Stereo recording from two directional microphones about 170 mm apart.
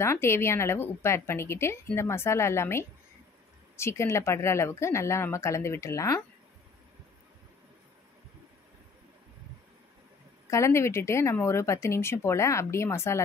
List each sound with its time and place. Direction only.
0.0 s a woman's voice: 15° left (ahead or behind)
10.5 s a woman's voice: 15° left (ahead or behind)